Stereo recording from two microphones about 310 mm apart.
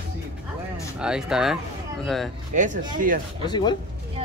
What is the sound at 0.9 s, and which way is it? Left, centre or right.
Speech, centre.